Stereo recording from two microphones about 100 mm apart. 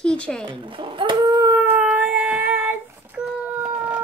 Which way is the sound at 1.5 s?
20° right (ahead or behind).